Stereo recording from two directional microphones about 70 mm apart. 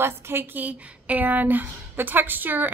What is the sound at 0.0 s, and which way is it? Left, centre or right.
A woman's voice, right.